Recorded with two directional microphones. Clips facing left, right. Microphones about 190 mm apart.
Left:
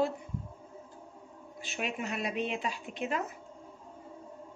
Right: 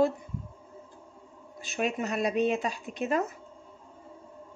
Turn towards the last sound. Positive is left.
turn(degrees=-40)  # may be behind; listen again after turning